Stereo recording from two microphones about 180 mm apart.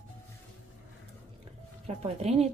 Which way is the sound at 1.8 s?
35° right (ahead or behind).